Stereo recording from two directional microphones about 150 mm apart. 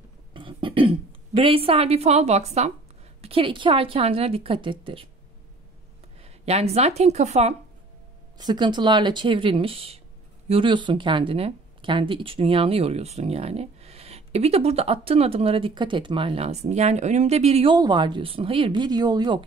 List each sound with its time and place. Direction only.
0.3 s speech: 35° right (ahead or behind)
6.2 s speech: 45° right (ahead or behind)
8.4 s speech: 30° right (ahead or behind)
17.7 s speech: 30° right (ahead or behind)